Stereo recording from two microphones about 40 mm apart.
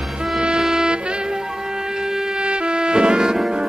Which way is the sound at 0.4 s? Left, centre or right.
Centre.